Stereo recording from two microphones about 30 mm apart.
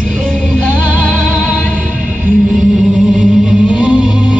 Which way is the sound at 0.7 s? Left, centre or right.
Right.